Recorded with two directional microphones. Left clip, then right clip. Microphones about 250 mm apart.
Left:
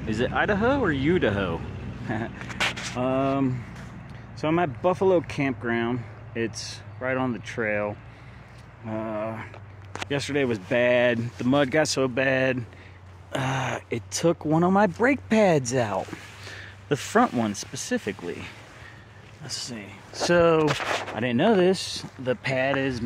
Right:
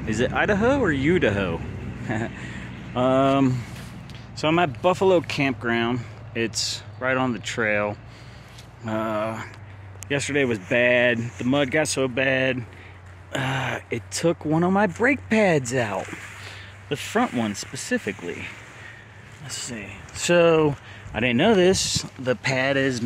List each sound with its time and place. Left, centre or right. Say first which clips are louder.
0.0 s speech: right 2 dB; centre
3.0 s speech: right 6 dB; centre
4.4 s speech: right 3 dB; centre
16.4 s a sound: left 4 dB; left
17.4 s speech: right 1 dB; centre